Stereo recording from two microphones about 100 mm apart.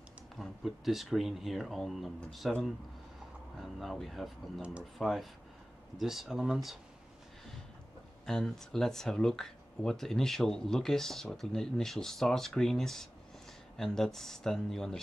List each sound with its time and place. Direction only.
0.4 s speech: centre (ahead or behind)
4.6 s speech: 10° right (ahead or behind)
4.9 s speech: centre (ahead or behind)
8.3 s speech: 5° left (ahead or behind)